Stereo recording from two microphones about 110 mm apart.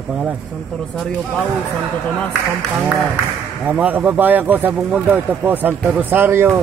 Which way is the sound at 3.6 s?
15° right (ahead or behind).